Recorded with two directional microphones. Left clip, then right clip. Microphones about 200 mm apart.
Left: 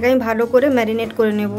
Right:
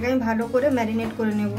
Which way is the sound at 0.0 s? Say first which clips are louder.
Left 8 dB; 55° left (ahead or behind).